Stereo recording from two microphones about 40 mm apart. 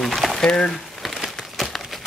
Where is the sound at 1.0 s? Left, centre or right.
Centre.